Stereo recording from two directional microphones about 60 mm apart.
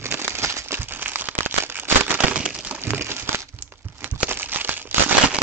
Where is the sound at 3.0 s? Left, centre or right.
Right.